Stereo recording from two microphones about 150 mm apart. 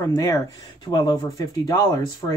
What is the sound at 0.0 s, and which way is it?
Speech, 20° left (ahead or behind).